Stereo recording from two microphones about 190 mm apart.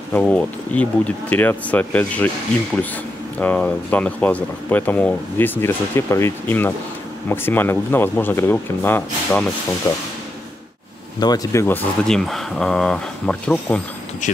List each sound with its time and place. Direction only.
0.1 s speech: 5° left (ahead or behind)
3.3 s speech: 5° left (ahead or behind)
11.1 s speech: 20° left (ahead or behind)